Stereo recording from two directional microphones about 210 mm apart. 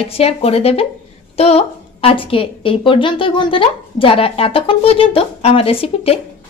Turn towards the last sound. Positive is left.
turn(degrees=30)  # may be behind; listen again after turning